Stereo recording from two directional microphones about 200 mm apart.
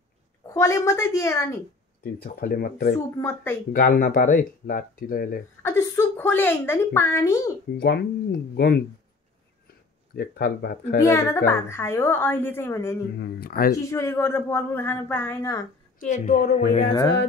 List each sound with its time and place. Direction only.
0.6 s a woman's voice: 15° left (ahead or behind)
2.2 s speech: 45° left (ahead or behind)
3.2 s a woman's voice: 10° left (ahead or behind)
3.7 s speech: 45° left (ahead or behind)
5.6 s a woman's voice: 15° left (ahead or behind)
7.7 s speech: 55° left (ahead or behind)
10.1 s speech: 50° left (ahead or behind)
11.0 s a woman's voice: 15° left (ahead or behind)
13.2 s speech: 50° left (ahead or behind)
13.8 s a woman's voice: 15° left (ahead or behind)
16.0 s a woman's voice: 40° left (ahead or behind)